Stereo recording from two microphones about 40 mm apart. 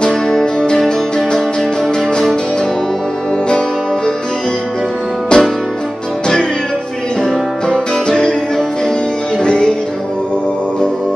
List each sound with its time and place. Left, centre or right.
0.1 s music: centre
3.4 s music: left
5.3 s music: left
7.7 s music: centre